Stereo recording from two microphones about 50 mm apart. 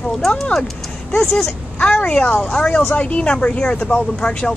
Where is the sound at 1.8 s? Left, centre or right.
Left.